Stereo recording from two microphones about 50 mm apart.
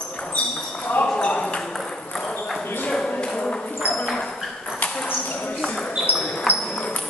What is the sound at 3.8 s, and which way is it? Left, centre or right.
Ping, right.